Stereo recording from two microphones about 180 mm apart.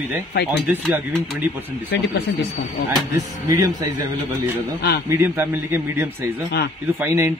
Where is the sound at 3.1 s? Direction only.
20° right (ahead or behind).